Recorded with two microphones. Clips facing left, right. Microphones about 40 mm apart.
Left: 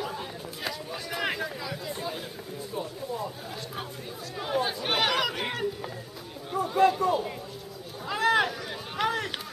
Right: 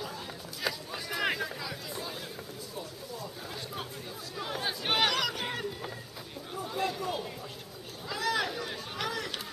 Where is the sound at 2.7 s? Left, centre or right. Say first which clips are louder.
Left 10 dB; left.